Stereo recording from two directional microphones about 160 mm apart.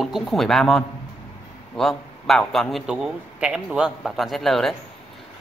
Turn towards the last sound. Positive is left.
turn(degrees=0)  # may be behind; listen again after turning